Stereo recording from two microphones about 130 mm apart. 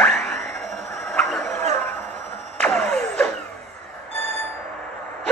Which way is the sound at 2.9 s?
5° left (ahead or behind).